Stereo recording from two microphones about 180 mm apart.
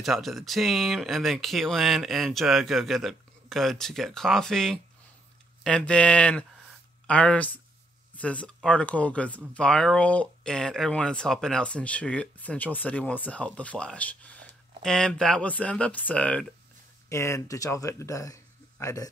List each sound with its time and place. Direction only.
0.0 s speech: centre (ahead or behind)
17.1 s speech: 15° left (ahead or behind)